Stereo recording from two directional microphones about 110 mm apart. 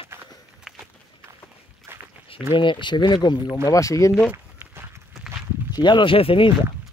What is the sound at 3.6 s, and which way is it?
Speech, 30° left (ahead or behind).